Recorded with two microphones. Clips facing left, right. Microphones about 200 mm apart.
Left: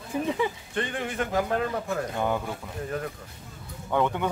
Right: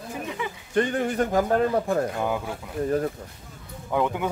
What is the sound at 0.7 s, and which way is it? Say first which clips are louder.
Speech: right 7 dB; 40° right (ahead or behind).